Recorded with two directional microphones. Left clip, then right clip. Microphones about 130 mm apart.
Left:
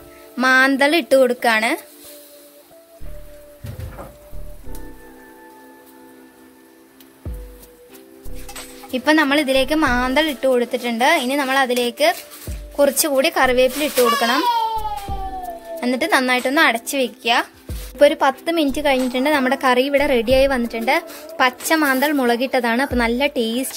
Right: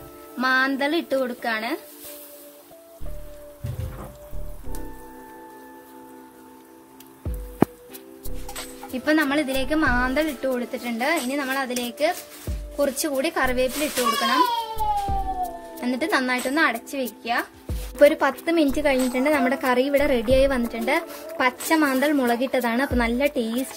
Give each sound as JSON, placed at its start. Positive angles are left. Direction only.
{"t": 0.4, "sound": "speech", "side_deg": 20}
{"t": 8.9, "sound": "a woman's voice", "side_deg": 10}
{"t": 14.2, "sound": "a sound", "side_deg": 5}
{"t": 15.7, "sound": "a woman's voice", "side_deg": 5}
{"t": 17.9, "sound": "a woman's voice", "side_deg": 0}